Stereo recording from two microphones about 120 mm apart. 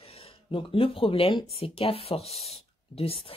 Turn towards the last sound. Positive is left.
turn(degrees=50)  # may be behind; listen again after turning